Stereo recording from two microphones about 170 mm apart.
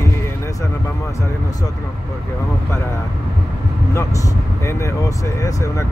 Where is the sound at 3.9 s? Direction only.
15° left (ahead or behind).